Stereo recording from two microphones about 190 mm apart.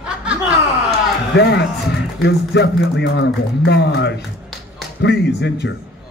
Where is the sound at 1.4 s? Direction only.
65° left (ahead or behind).